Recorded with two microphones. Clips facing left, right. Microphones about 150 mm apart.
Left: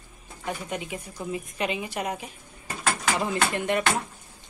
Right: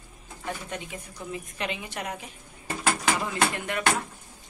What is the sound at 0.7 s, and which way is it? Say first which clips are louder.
Speech: left 4 dB; 15° left (ahead or behind).